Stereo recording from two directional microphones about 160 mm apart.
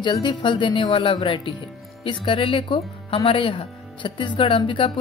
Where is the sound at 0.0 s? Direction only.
30° left (ahead or behind).